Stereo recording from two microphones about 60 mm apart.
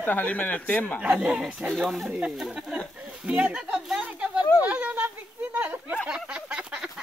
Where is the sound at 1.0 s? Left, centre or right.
Right.